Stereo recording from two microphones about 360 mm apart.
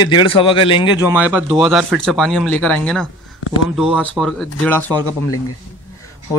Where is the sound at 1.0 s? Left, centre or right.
Centre.